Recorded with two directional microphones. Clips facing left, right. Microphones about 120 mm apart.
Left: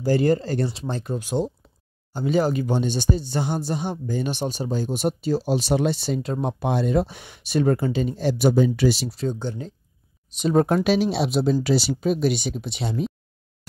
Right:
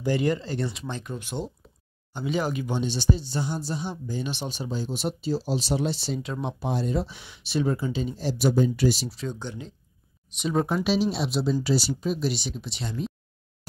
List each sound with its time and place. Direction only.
0.0 s speech: 35° left (ahead or behind); by 6.3 s 55° left (ahead or behind)
6.6 s speech: 65° left (ahead or behind)
9.1 s speech: 40° left (ahead or behind)
10.7 s speech: 55° left (ahead or behind)
11.1 s speech: 75° left (ahead or behind); by 12.9 s 60° left (ahead or behind)